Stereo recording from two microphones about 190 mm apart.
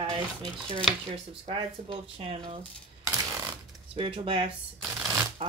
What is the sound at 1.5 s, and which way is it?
Speech, 30° right (ahead or behind).